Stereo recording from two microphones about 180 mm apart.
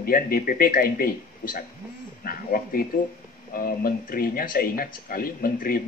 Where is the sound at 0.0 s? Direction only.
55° left (ahead or behind).